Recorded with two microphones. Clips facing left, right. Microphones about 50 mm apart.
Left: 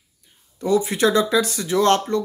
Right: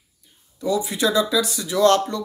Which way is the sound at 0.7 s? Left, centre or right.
Left.